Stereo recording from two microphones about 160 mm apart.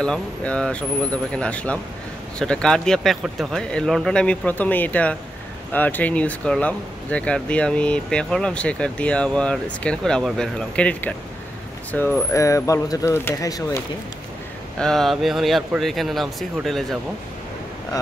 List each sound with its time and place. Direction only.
0.0 s speech: 5° left (ahead or behind)
14.8 s speech: centre (ahead or behind)